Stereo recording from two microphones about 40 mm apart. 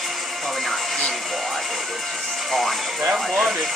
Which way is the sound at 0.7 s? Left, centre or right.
Centre.